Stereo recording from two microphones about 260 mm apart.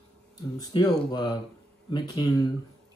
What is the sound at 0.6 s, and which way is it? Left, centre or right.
Speech, centre.